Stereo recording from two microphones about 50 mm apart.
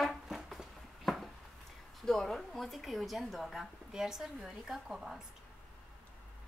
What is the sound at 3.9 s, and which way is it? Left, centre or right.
A woman's voice, centre.